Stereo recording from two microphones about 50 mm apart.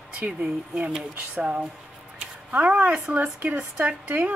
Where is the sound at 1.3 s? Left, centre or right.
Right.